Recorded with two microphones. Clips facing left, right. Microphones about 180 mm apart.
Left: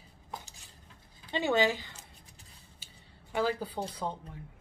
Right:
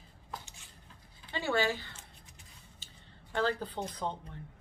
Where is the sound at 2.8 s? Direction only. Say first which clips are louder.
Even; 10° left (ahead or behind).